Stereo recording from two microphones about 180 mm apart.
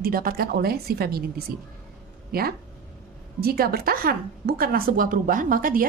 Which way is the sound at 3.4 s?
60° right (ahead or behind).